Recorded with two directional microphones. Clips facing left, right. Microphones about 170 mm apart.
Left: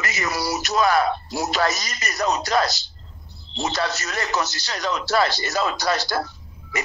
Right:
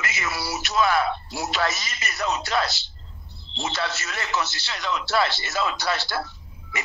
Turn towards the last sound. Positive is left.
turn(degrees=40)  # may be behind; listen again after turning